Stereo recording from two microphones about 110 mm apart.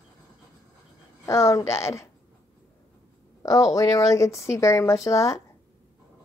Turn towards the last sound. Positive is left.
turn(degrees=30)  # may be behind; listen again after turning